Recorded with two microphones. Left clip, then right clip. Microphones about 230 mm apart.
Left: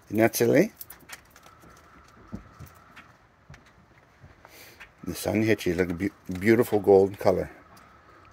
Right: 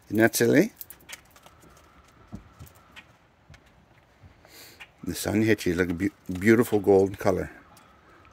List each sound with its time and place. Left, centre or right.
0.1 s speech: right
5.0 s speech: right